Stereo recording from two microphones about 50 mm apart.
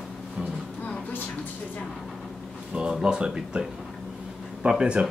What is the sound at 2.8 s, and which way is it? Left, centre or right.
Speech, centre.